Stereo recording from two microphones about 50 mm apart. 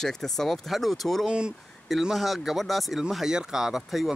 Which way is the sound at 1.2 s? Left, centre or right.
Centre.